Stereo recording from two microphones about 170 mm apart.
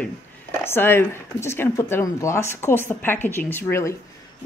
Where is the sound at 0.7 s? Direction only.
15° left (ahead or behind).